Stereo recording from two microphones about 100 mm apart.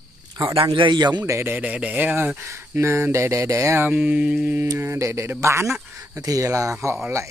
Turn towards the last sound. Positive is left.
turn(degrees=-30)  # may be behind; listen again after turning